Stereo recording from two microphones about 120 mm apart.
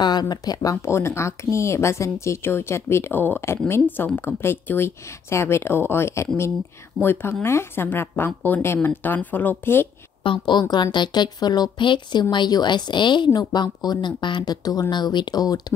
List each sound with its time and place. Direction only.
0.0 s speech: 35° left (ahead or behind); by 9.8 s 15° left (ahead or behind)
10.2 s a woman's voice: 45° left (ahead or behind)